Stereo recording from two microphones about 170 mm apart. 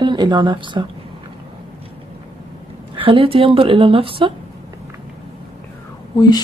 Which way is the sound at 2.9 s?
30° right (ahead or behind).